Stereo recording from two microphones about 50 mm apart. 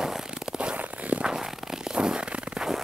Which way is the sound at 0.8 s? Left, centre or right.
Right.